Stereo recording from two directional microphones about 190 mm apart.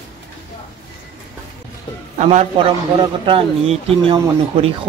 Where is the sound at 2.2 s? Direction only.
35° right (ahead or behind).